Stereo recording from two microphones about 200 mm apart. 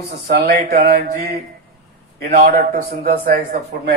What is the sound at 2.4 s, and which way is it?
Speech, 40° right (ahead or behind).